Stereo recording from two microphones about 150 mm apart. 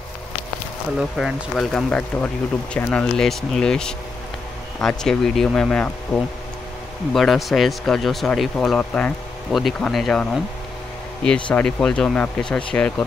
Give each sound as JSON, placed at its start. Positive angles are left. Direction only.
{"t": 0.9, "sound": "speech", "side_deg": 0}
{"t": 7.2, "sound": "speech", "side_deg": 0}